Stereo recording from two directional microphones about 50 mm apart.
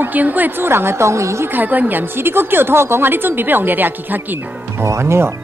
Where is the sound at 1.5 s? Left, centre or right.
Right.